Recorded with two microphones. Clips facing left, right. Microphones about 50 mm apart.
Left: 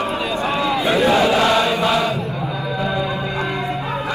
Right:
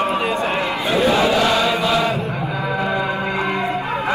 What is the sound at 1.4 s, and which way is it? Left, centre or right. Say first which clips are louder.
Chant: left 1 dB; left.